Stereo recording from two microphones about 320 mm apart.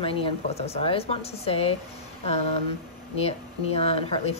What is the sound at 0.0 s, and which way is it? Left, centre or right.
Speech, centre.